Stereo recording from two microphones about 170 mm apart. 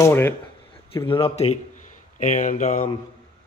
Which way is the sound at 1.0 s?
30° left (ahead or behind).